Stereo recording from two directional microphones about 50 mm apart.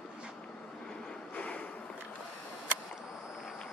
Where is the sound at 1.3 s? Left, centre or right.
Left.